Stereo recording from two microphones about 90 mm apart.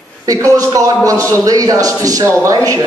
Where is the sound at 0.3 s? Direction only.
40° right (ahead or behind).